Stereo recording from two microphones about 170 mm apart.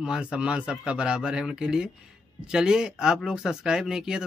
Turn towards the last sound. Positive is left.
turn(degrees=-5)  # may be behind; listen again after turning